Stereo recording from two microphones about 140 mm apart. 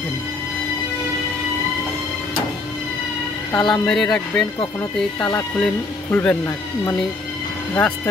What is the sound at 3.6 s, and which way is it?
Speech, 5° left (ahead or behind).